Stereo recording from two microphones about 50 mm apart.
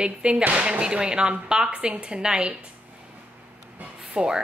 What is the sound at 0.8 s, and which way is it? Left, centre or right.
A woman's voice, centre.